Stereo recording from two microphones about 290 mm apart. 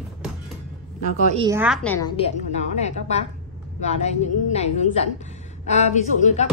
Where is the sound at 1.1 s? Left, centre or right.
Right.